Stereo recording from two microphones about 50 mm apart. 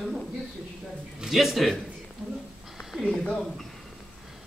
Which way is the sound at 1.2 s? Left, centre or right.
Centre.